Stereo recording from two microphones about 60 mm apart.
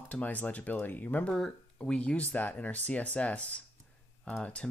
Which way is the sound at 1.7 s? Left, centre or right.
Centre.